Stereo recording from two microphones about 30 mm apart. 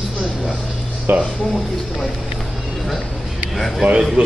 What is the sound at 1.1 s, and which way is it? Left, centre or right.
Speech, right.